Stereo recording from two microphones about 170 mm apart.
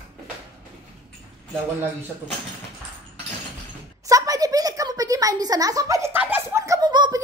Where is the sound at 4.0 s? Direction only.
20° right (ahead or behind).